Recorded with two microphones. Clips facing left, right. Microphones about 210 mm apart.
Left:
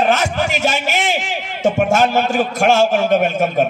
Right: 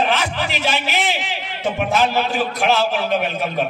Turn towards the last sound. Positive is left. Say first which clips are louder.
# left 6 dB
turn(degrees=50)  # may be behind; listen again after turning